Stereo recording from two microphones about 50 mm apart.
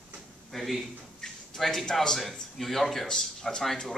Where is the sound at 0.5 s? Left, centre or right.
Centre.